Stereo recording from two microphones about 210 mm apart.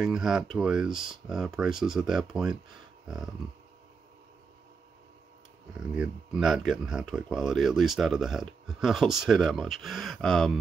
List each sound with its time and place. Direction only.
0.0 s speech: 5° right (ahead or behind)
5.8 s speech: 5° right (ahead or behind)